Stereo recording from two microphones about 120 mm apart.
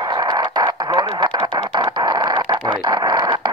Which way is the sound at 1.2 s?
40° right (ahead or behind).